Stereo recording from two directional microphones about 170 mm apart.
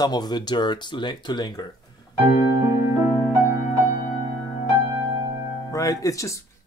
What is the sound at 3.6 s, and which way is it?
Music, 50° left (ahead or behind).